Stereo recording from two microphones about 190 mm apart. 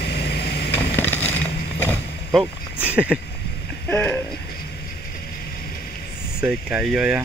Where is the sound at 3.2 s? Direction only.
60° left (ahead or behind).